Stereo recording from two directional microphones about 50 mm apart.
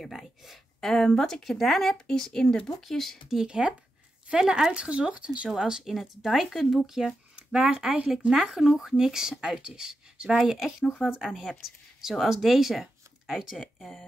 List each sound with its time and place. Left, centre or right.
0.0 s speech: centre
0.7 s speech: centre
3.3 s speech: centre
5.5 s speech: centre
11.2 s speech: centre